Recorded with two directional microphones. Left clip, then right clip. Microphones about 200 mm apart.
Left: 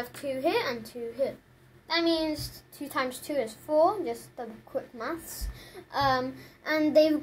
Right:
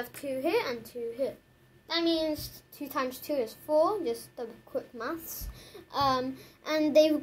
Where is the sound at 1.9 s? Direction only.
30° right (ahead or behind).